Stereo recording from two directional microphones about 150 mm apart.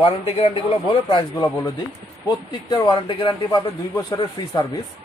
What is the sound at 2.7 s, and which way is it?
Speech, 25° left (ahead or behind).